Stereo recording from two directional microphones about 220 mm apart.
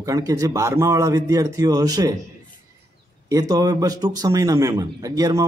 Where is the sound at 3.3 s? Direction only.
15° right (ahead or behind).